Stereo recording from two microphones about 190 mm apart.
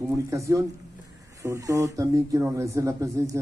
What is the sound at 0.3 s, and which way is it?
Speech, 15° right (ahead or behind).